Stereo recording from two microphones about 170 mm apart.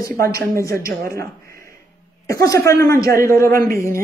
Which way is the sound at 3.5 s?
60° right (ahead or behind).